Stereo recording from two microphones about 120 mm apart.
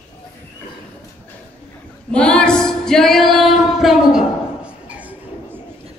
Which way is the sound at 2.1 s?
10° left (ahead or behind).